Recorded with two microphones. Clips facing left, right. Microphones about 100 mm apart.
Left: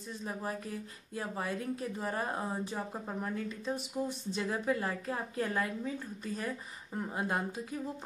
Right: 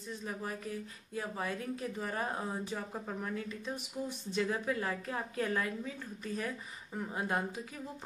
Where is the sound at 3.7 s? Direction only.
30° left (ahead or behind).